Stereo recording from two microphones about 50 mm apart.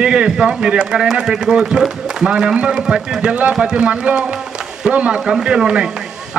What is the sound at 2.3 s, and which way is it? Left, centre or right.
A man's voice, centre.